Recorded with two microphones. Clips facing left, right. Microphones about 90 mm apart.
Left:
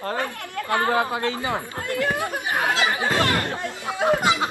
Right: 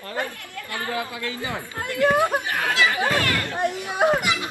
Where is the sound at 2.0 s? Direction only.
20° right (ahead or behind).